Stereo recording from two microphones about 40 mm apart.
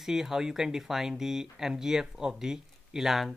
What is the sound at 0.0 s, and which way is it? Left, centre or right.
Speech, centre.